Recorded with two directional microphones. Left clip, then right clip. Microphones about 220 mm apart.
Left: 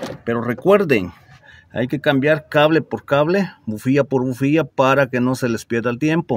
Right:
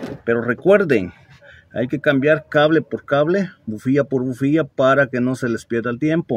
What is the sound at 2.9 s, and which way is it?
Speech, 40° left (ahead or behind).